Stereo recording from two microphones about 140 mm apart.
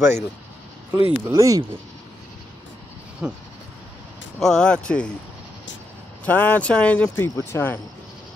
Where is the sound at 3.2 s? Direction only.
10° right (ahead or behind).